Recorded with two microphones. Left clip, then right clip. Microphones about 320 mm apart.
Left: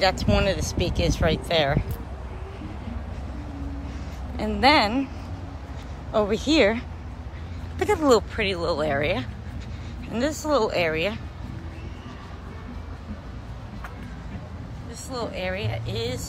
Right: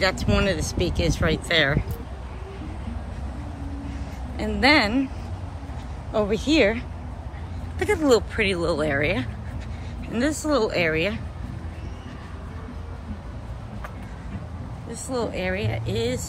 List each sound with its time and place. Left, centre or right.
0.0 s speech: centre
4.4 s speech: centre
6.1 s a woman's voice: left
7.8 s speech: centre
14.9 s speech: centre